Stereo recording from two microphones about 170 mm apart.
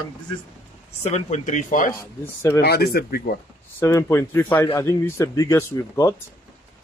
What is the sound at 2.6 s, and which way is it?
Speech, 70° left (ahead or behind).